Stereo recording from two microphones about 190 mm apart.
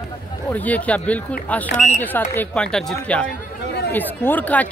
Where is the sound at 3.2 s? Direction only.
60° left (ahead or behind).